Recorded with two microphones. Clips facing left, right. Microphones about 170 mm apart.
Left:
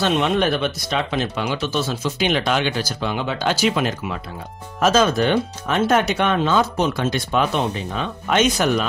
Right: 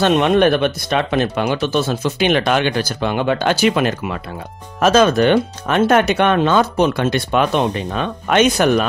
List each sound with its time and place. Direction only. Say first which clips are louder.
0.0 s speech: right 6 dB; 55° right (ahead or behind)